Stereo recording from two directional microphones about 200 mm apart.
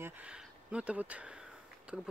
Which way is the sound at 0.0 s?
5° right (ahead or behind).